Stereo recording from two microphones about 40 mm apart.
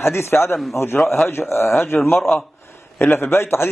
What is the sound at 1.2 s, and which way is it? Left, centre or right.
Speech, left.